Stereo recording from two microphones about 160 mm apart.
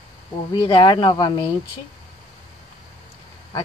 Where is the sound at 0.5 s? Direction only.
30° left (ahead or behind).